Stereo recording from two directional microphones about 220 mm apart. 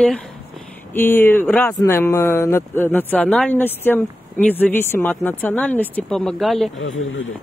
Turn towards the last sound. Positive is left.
turn(degrees=55)  # may be behind; listen again after turning